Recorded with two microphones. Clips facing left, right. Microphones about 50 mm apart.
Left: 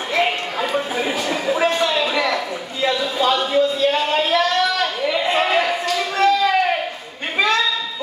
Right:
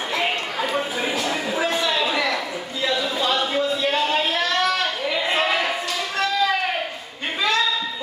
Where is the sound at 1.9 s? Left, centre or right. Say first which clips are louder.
Left 2 dB; left.